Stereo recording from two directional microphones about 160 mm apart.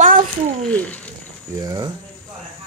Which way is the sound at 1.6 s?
25° right (ahead or behind).